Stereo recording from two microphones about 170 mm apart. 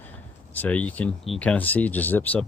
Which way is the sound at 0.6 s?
10° left (ahead or behind).